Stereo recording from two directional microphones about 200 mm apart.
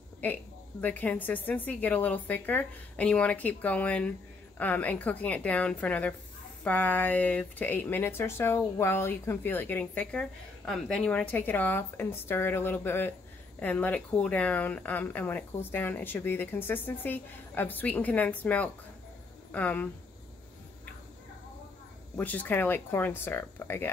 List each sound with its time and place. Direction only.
0.2 s speech: 10° left (ahead or behind)
22.1 s speech: 10° left (ahead or behind)